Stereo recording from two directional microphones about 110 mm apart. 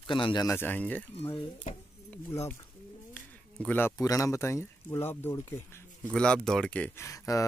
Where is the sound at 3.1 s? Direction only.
15° left (ahead or behind).